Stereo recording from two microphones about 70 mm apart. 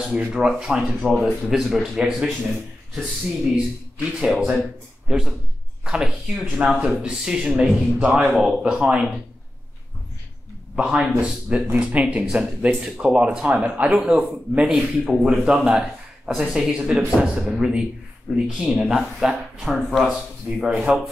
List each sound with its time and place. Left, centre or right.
0.1 s a man's voice: centre
10.8 s speech: centre